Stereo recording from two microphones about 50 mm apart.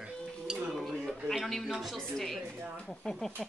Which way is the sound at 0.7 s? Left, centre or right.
Centre.